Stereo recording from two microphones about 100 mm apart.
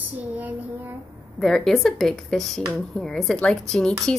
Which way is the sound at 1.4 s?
5° left (ahead or behind).